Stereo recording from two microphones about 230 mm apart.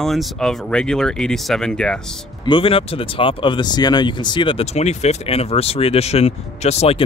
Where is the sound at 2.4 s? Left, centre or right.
Left.